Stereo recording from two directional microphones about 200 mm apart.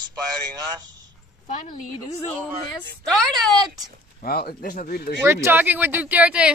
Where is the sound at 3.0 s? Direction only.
Centre (ahead or behind).